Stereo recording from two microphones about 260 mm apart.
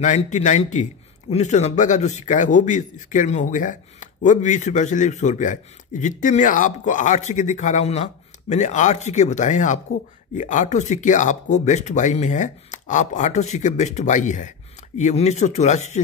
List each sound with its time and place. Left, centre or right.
0.0 s a man's voice: left